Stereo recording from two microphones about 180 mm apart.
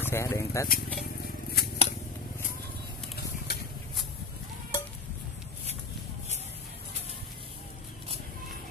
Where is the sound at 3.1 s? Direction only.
65° left (ahead or behind).